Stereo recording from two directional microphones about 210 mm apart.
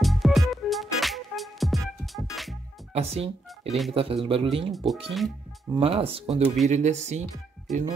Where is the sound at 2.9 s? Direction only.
30° right (ahead or behind).